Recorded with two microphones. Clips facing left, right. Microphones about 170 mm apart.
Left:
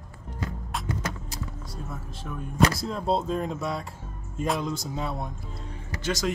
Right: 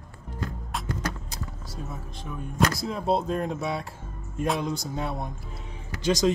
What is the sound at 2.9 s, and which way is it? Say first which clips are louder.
Speech: right 1 dB; 15° right (ahead or behind).